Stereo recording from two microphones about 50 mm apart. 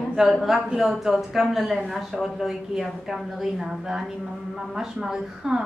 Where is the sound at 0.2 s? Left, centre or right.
Centre.